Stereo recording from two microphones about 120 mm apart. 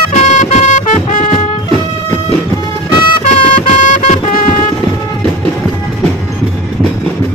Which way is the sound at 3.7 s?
90° left.